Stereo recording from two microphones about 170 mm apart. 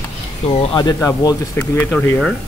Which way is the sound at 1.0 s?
20° left (ahead or behind).